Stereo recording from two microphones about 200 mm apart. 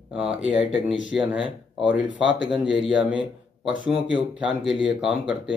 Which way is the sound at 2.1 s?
65° left (ahead or behind).